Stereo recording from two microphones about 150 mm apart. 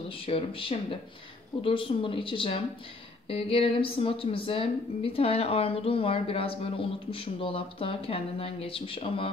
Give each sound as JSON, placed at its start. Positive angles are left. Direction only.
{"t": 0.2, "sound": "a woman's voice", "side_deg": 35}